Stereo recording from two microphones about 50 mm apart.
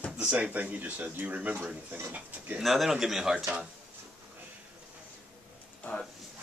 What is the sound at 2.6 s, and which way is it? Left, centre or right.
Speech, centre.